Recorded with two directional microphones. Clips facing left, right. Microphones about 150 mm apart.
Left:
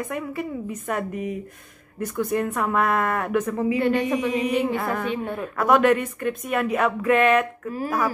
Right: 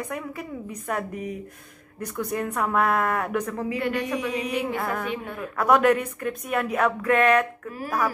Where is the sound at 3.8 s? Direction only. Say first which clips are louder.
Left 4 dB; 30° left (ahead or behind).